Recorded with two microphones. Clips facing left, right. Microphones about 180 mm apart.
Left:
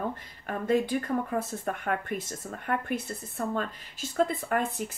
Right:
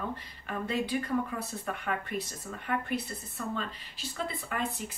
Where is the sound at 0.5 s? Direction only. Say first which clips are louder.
Left 5 dB; 50° left (ahead or behind).